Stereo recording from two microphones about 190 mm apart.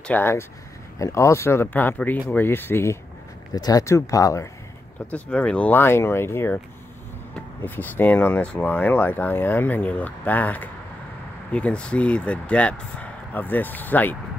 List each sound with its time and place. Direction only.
0.1 s speech: 15° left (ahead or behind)
5.1 s speech: 5° left (ahead or behind)